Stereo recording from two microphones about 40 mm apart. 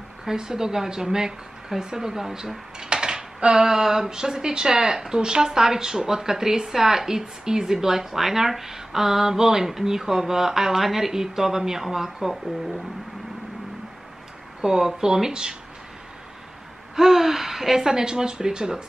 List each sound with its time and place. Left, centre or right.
0.2 s speech: centre
14.6 s speech: centre
16.9 s speech: centre